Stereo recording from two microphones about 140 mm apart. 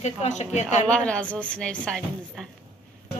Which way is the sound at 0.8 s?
5° left (ahead or behind).